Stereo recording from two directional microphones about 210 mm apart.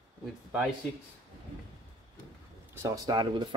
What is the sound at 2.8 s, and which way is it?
Speech, 20° right (ahead or behind).